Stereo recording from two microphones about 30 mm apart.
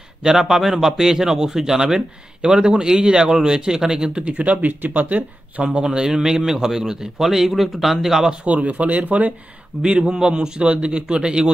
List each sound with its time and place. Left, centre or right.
0.3 s speech: centre
2.0 s speech: right
4.2 s speech: right
5.6 s speech: right; by 8.3 s centre
8.5 s speech: right
9.8 s speech: right